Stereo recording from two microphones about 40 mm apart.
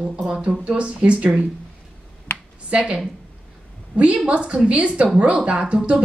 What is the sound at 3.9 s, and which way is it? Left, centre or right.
A woman's voice, right.